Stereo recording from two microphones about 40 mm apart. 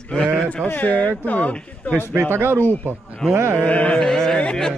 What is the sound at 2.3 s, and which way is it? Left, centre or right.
Speech, right.